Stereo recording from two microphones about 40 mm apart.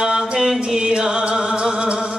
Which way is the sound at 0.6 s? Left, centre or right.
Centre.